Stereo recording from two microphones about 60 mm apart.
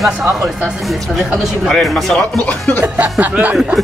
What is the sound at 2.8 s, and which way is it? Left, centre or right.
Music, right.